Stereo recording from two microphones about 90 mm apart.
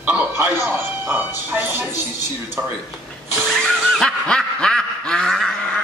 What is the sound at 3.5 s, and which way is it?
Snicker, 5° left (ahead or behind).